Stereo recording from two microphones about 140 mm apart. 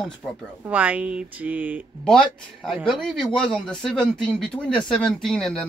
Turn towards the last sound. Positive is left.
turn(degrees=5)  # may be behind; listen again after turning